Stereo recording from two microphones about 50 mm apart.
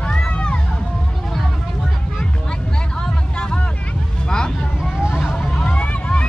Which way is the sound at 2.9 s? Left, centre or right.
Centre.